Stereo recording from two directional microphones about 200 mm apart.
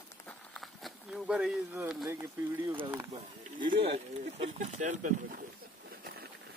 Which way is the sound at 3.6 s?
25° right (ahead or behind).